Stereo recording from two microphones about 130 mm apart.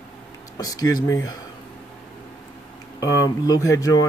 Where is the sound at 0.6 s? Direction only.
30° left (ahead or behind).